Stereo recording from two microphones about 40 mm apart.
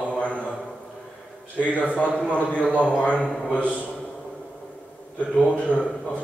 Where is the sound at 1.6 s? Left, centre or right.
Left.